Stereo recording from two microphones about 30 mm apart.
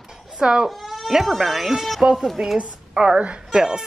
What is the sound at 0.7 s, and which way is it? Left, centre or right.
Sheep, centre.